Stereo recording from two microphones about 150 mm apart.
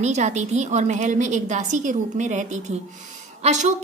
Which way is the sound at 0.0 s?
50° right (ahead or behind).